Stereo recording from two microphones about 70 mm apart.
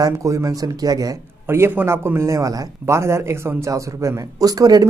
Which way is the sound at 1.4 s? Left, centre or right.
Right.